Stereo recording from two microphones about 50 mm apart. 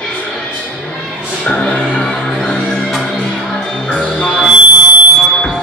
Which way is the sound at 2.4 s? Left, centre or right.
Centre.